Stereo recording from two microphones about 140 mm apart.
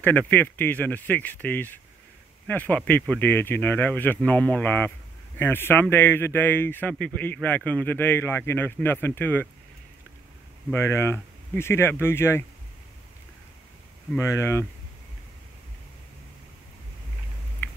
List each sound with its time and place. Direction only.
0.3 s speech: 10° left (ahead or behind)
10.7 s speech: 20° left (ahead or behind)
14.1 s speech: 20° left (ahead or behind)